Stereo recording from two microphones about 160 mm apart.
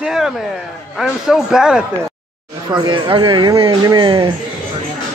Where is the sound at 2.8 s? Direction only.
35° right (ahead or behind).